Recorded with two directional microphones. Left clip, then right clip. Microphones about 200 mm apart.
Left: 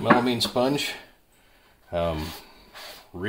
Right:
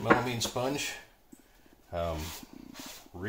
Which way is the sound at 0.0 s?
35° left (ahead or behind).